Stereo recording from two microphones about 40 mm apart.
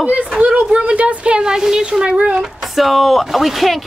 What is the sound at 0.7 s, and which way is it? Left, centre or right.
Speech, right.